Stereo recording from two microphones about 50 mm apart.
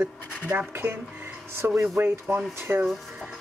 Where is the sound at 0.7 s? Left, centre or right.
Right.